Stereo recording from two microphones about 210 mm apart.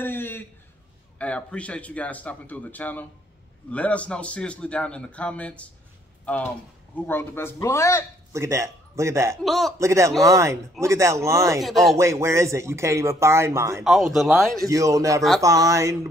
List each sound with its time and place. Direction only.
0.0 s a sound: 10° left (ahead or behind)
1.1 s a man's voice: 5° left (ahead or behind)
8.3 s a man's voice: 15° right (ahead or behind)
9.4 s a man's voice: centre (ahead or behind)
9.8 s speech: 15° right (ahead or behind)
11.6 s a man's voice: centre (ahead or behind)
12.0 s speech: 15° right (ahead or behind)
14.1 s a man's voice: centre (ahead or behind)
14.7 s speech: 15° right (ahead or behind)